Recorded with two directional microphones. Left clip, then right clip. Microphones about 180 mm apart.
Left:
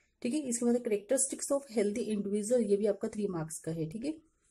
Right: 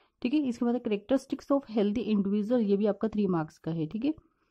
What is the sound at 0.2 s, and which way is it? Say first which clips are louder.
A woman's voice: right 4 dB; 40° right (ahead or behind).